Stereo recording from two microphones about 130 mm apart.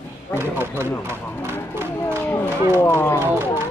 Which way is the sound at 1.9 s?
15° left (ahead or behind).